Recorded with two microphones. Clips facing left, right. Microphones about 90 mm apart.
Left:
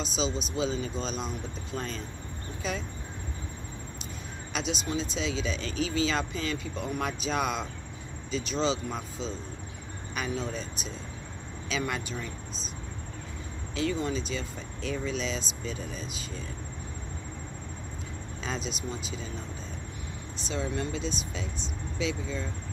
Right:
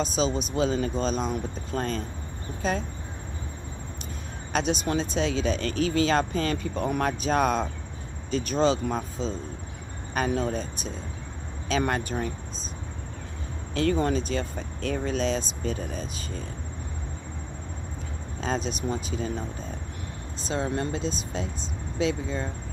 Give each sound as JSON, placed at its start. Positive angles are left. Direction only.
{"t": 0.0, "sound": "speech", "side_deg": -45}
{"t": 4.5, "sound": "speech", "side_deg": -45}
{"t": 13.7, "sound": "speech", "side_deg": -55}
{"t": 18.4, "sound": "speech", "side_deg": -40}
{"t": 20.4, "sound": "speech", "side_deg": -45}